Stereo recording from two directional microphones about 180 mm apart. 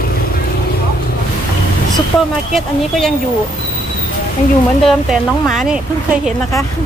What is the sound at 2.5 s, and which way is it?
Speech, centre (ahead or behind).